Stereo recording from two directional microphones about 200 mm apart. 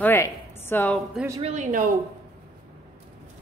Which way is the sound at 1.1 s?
10° right (ahead or behind).